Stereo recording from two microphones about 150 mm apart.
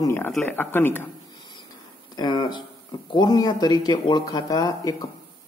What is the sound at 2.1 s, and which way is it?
Speech, 30° left (ahead or behind).